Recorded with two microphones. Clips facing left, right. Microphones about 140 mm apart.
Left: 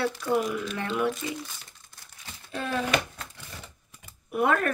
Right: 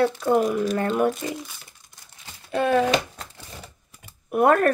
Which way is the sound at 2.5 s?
70° right (ahead or behind).